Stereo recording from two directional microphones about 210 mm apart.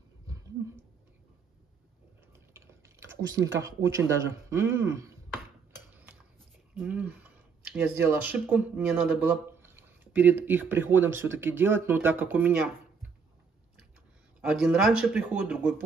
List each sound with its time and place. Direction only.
2.5 s typing: 10° right (ahead or behind)
3.3 s speech: 60° right (ahead or behind)
3.6 s speech: 15° right (ahead or behind)
6.7 s speech: 10° right (ahead or behind)
14.5 s speech: 5° right (ahead or behind)